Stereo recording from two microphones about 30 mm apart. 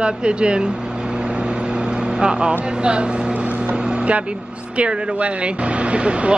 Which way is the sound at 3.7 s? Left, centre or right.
Right.